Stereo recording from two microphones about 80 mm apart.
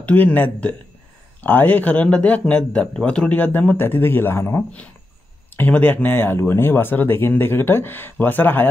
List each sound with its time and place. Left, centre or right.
0.0 s a man's voice: left